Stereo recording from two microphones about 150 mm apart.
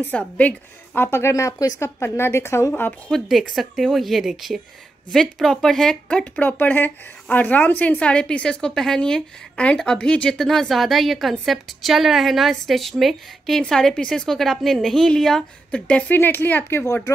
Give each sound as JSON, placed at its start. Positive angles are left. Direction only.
{"t": 0.0, "sound": "a woman's voice", "side_deg": 10}
{"t": 3.1, "sound": "speech", "side_deg": 0}